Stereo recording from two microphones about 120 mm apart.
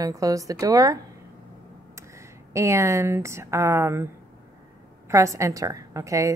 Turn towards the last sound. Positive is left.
turn(degrees=-25)  # may be behind; listen again after turning